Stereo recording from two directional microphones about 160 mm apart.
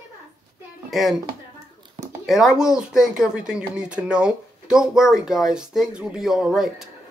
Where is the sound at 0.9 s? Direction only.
Centre (ahead or behind).